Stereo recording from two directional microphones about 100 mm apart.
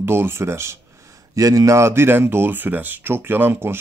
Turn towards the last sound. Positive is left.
turn(degrees=-25)  # may be behind; listen again after turning